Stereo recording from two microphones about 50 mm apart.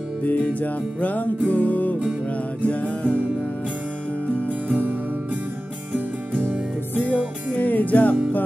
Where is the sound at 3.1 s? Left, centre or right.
Right.